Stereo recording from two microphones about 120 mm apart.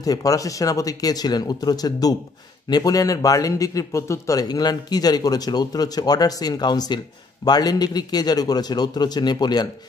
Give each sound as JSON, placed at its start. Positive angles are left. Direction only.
{"t": 0.0, "sound": "a man's voice", "side_deg": 30}